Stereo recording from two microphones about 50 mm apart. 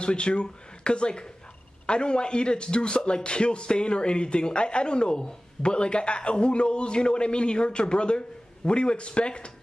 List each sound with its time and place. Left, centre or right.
0.0 s speech: left